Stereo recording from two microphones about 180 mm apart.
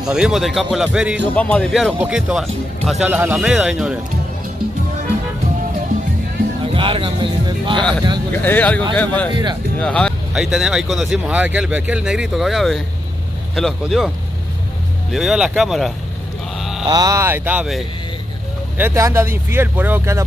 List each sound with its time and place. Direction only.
0.0 s speech: 5° right (ahead or behind)
1.3 s speech: 5° left (ahead or behind)
6.6 s speech: 30° right (ahead or behind)
8.3 s speech: 10° left (ahead or behind)
9.3 s speech: 25° right (ahead or behind)
9.8 s speech: 5° left (ahead or behind)
16.5 s mantra: centre (ahead or behind)
16.8 s speech: 20° right (ahead or behind)